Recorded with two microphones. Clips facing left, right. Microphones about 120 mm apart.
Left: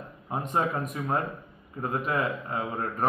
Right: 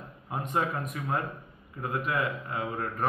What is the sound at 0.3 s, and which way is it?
Speech, 40° left (ahead or behind).